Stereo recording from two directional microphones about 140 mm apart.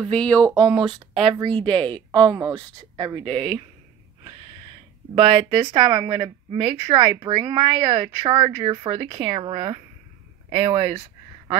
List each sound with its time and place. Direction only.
0.0 s speech: 5° left (ahead or behind)
1.3 s speech: 35° right (ahead or behind)
5.1 s speech: 35° right (ahead or behind)